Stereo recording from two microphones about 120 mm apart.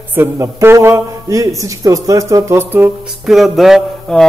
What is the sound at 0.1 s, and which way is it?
A man's voice, 20° right (ahead or behind).